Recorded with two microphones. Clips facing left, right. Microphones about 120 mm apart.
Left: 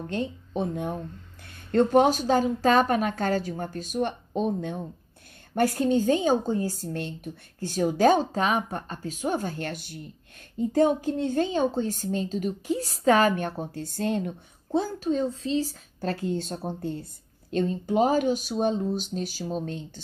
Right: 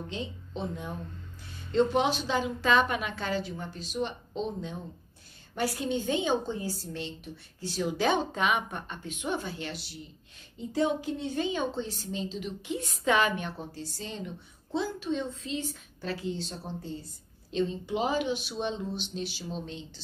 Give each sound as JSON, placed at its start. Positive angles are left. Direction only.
{"t": 0.1, "sound": "a woman's voice", "side_deg": 50}
{"t": 13.7, "sound": "a woman's voice", "side_deg": 55}